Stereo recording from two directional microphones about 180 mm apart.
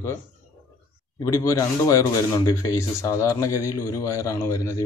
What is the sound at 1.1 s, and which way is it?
A man's voice, 20° left (ahead or behind).